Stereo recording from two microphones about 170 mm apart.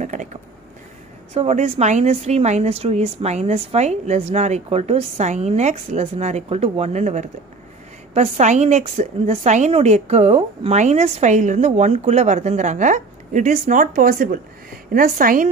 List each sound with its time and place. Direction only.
0.0 s a woman's voice: 45° right (ahead or behind)